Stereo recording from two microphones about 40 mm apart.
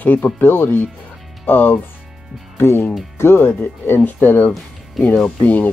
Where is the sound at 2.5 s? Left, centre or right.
Left.